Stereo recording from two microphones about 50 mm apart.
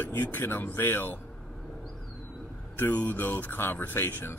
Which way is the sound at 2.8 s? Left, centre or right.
Left.